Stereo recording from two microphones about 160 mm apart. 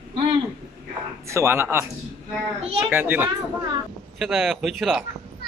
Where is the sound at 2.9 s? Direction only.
10° right (ahead or behind).